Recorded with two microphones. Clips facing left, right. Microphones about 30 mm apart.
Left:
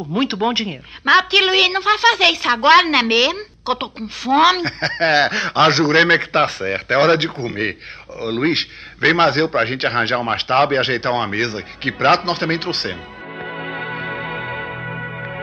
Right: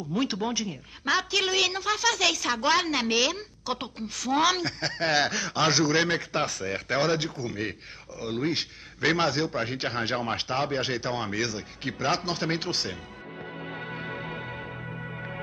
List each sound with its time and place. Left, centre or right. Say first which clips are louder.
0.0 s a woman's voice: left 9 dB; left
13.4 s music: left 11 dB; left